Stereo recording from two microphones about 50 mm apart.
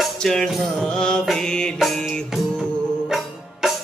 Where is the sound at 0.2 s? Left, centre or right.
Centre.